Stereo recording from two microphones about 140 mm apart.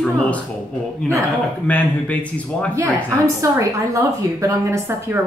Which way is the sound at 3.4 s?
20° right (ahead or behind).